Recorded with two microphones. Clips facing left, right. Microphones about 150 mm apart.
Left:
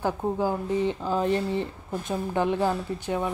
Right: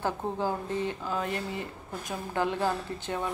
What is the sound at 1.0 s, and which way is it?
Speech, 30° left (ahead or behind).